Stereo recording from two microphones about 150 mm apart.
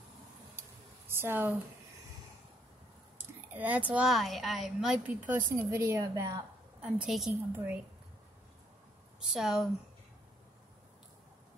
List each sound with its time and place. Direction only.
0.6 s a sound: 15° right (ahead or behind)
3.2 s a woman's voice: 10° right (ahead or behind)
6.8 s a woman's voice: 5° right (ahead or behind)
9.2 s a woman's voice: 5° right (ahead or behind)